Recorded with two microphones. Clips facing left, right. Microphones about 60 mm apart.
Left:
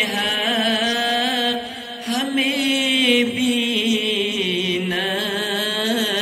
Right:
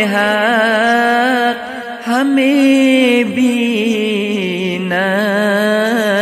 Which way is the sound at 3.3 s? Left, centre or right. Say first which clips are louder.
Right 7 dB; right.